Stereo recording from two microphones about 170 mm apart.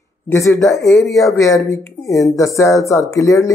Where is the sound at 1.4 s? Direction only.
20° left (ahead or behind).